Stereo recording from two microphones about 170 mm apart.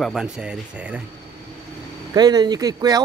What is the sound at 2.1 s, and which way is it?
Speech, 25° right (ahead or behind).